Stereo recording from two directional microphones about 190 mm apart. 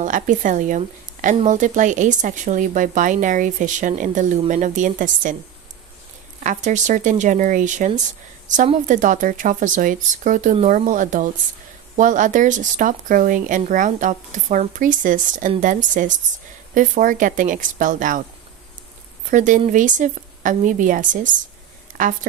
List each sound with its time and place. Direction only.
0.0 s a woman's voice: 40° right (ahead or behind)
6.4 s a woman's voice: 40° right (ahead or behind)
19.3 s a woman's voice: 40° right (ahead or behind)